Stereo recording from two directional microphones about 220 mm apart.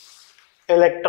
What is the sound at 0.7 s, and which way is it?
Speech, 15° left (ahead or behind).